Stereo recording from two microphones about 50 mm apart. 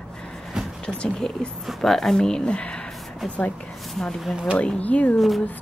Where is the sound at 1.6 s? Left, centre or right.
Centre; by 2.8 s left.